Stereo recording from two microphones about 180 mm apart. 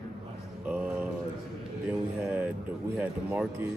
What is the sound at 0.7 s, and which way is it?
Speech, 5° right (ahead or behind).